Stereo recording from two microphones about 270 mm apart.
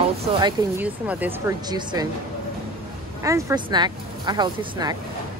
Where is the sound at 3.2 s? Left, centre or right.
Centre.